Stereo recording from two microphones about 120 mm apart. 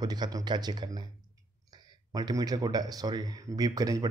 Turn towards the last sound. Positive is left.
turn(degrees=-30)  # may be behind; listen again after turning